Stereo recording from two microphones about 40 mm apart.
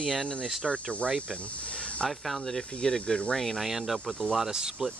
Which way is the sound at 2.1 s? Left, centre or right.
Centre.